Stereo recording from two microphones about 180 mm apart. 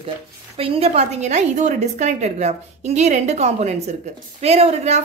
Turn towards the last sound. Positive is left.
turn(degrees=-35)  # may be behind; listen again after turning